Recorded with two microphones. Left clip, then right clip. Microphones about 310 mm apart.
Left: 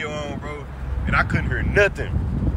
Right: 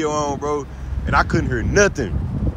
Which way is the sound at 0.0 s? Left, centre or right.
Centre.